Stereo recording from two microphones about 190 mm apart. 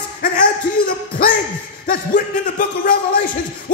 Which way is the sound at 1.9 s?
45° left (ahead or behind).